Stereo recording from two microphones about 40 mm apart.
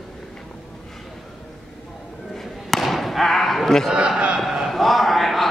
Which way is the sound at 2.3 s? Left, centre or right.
Centre.